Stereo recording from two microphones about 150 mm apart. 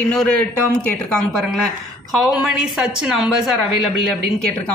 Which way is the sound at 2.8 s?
5° right (ahead or behind).